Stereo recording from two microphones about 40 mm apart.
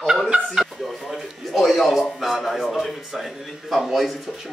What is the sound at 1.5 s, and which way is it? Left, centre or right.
A man's voice, centre.